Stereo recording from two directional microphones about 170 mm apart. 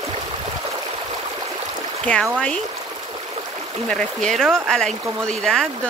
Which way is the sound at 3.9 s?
5° left (ahead or behind).